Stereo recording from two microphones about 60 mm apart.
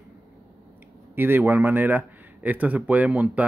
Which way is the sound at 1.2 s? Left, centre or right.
Right.